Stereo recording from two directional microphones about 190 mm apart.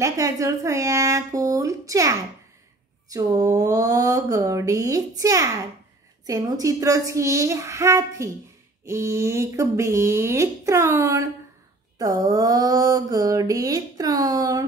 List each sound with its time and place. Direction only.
0.0 s speech: 15° right (ahead or behind)
12.0 s mantra: 20° right (ahead or behind)